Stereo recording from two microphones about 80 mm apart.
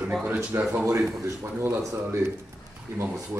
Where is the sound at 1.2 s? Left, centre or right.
Right.